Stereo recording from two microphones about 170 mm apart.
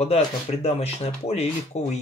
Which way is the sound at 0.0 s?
40° left (ahead or behind).